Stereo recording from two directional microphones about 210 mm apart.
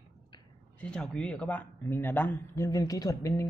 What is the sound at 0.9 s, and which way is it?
Speech, 5° left (ahead or behind).